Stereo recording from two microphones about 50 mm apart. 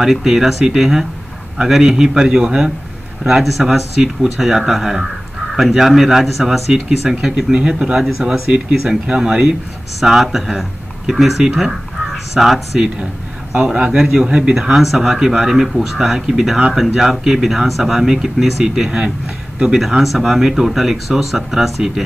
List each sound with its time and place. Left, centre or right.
0.0 s speech: centre
8.5 s speech: right
9.9 s speech: centre
13.7 s speech: right
13.9 s speech: centre
14.2 s speech: right
14.5 s speech: centre